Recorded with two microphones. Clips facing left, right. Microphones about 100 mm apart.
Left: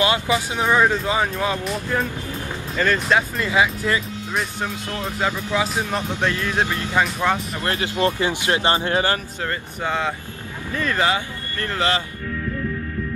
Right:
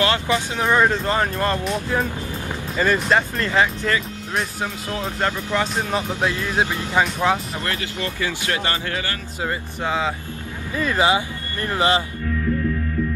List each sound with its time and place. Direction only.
0.0 s speech: 15° left (ahead or behind)
4.3 s speech: centre (ahead or behind)
6.4 s speech: 15° right (ahead or behind)
7.6 s speech: 25° left (ahead or behind)
9.8 s speech: centre (ahead or behind); by 12.0 s 20° right (ahead or behind)